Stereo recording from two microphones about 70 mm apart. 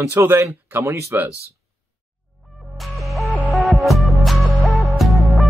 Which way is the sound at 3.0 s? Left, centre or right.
Centre.